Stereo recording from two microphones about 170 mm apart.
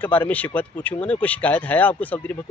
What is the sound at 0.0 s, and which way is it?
Speech, 10° left (ahead or behind).